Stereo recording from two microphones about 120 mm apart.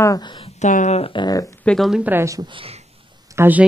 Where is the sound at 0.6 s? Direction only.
85° left.